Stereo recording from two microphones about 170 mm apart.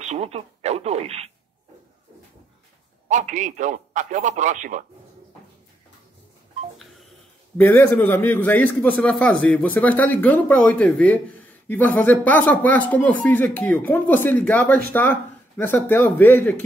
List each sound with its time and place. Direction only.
0.0 s speech: 40° right (ahead or behind)
3.1 s a man's voice: 45° right (ahead or behind)
7.5 s a man's voice: 10° left (ahead or behind)